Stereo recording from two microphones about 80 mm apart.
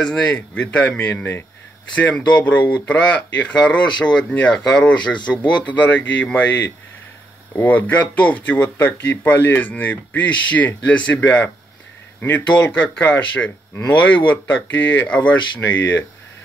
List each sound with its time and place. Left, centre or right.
0.0 s speech: centre
2.3 s speech: centre
7.5 s speech: left